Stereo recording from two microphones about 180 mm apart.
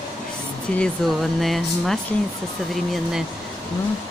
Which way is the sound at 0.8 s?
Centre (ahead or behind).